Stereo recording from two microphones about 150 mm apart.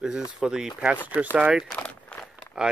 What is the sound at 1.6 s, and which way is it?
Crumpling, 10° left (ahead or behind).